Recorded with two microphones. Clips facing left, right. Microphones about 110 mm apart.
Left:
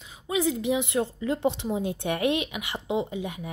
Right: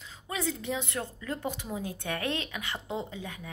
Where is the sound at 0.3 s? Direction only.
15° left (ahead or behind).